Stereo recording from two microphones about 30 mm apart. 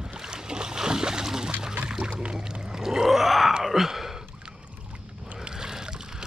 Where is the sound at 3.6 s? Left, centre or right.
Centre.